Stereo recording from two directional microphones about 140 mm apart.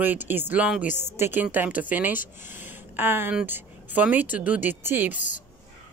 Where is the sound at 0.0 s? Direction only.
15° right (ahead or behind).